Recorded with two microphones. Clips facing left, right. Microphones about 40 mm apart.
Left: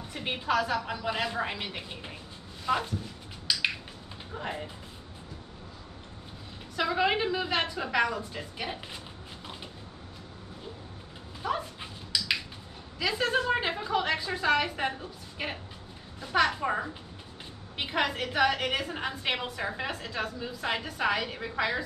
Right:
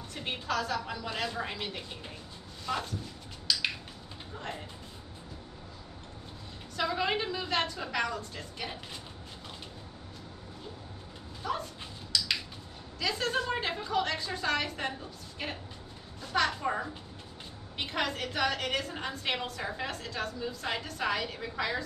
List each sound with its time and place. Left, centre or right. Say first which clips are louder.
0.1 s a woman's voice: left 5 dB; centre
3.5 s a sound: left 1 dB; centre
4.4 s speech: left 5 dB; centre
6.8 s a woman's voice: left 4 dB; centre
11.4 s dog: left 3 dB; centre
13.0 s a woman's voice: left 3 dB; centre